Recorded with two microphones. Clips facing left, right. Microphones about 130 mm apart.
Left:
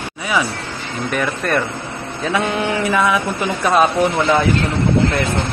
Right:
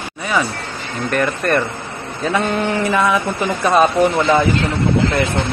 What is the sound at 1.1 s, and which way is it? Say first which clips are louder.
Speech: right 3 dB; centre (ahead or behind).